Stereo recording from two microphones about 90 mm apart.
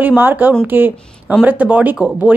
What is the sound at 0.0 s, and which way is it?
Speech, 20° right (ahead or behind).